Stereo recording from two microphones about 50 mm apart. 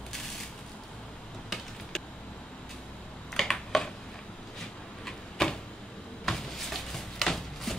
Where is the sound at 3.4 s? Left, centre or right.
Centre.